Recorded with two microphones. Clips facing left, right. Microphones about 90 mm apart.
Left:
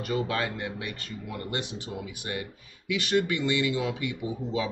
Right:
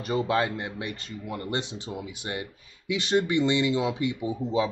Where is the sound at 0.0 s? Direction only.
25° right (ahead or behind).